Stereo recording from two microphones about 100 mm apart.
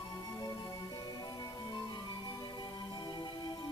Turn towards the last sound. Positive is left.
turn(degrees=50)  # may be behind; listen again after turning